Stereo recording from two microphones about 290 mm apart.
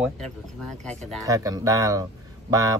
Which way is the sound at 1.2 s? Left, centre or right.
Centre.